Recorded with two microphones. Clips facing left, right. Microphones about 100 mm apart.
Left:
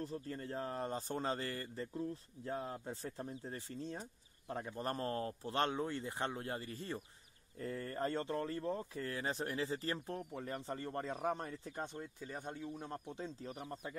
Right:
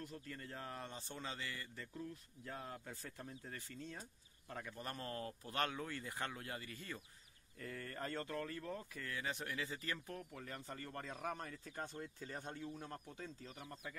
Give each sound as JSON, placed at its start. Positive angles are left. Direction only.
{"t": 0.0, "sound": "speech", "side_deg": 30}
{"t": 2.0, "sound": "speech", "side_deg": 30}